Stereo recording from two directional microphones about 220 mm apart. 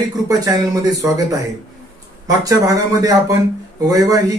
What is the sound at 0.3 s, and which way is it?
Speech, 15° right (ahead or behind).